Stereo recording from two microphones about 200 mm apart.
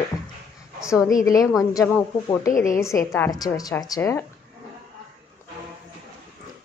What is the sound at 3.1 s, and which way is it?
A woman's voice, 15° left (ahead or behind).